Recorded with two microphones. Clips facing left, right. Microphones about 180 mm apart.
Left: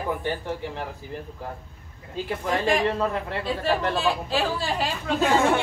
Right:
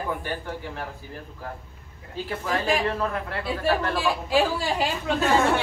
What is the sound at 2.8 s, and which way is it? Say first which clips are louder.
Speech: left 2 dB; 20° left (ahead or behind).